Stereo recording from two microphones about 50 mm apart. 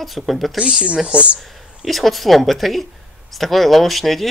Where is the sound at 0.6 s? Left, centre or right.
Centre.